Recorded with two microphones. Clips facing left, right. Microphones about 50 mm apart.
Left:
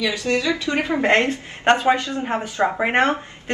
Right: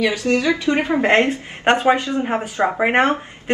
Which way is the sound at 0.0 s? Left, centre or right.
Right.